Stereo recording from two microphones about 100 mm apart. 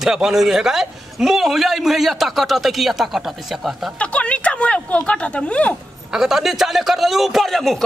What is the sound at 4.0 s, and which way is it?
Speech, 10° left (ahead or behind).